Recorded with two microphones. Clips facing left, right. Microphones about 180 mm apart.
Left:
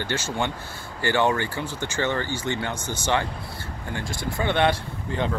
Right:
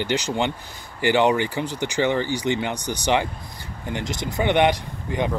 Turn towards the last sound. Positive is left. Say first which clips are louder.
# right 2 dB
turn(degrees=-15)  # may be behind; listen again after turning